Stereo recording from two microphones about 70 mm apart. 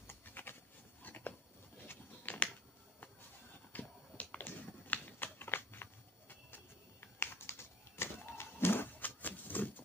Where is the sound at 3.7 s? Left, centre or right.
Left.